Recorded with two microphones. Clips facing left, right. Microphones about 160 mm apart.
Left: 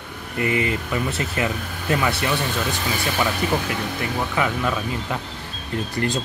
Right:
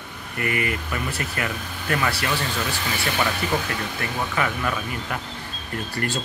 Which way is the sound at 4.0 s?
15° left (ahead or behind).